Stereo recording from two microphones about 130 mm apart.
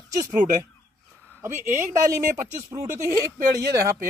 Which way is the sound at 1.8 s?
25° right (ahead or behind).